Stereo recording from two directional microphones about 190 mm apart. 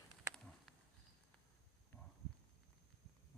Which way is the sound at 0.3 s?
5° left (ahead or behind).